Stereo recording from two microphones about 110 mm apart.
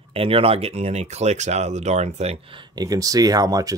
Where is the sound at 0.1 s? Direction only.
60° right (ahead or behind); by 2.3 s 90° right.